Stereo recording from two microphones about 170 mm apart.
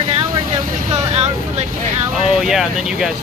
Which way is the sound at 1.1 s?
40° right (ahead or behind).